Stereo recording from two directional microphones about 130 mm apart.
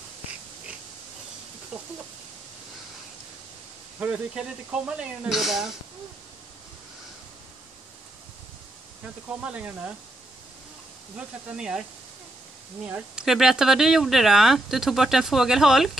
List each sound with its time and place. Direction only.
1.7 s a sound: 10° right (ahead or behind)
4.0 s speech: 10° right (ahead or behind)
9.4 s speech: 10° right (ahead or behind)
11.1 s speech: 5° right (ahead or behind)
12.8 s speech: 10° right (ahead or behind)